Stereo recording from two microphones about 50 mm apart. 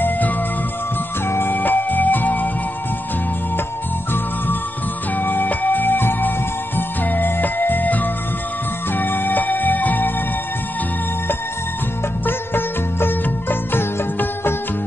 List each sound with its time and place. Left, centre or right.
1.3 s music: left
5.1 s music: left
12.3 s music: left